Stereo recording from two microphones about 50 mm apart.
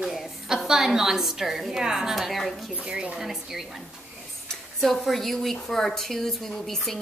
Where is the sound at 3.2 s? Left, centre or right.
Centre.